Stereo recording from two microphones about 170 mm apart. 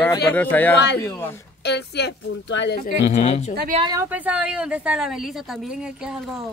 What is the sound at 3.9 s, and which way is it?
A woman's voice, 10° right (ahead or behind).